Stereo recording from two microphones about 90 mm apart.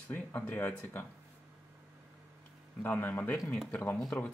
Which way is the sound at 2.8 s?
20° left (ahead or behind).